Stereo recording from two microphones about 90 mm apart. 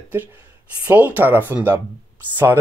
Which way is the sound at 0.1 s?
20° right (ahead or behind).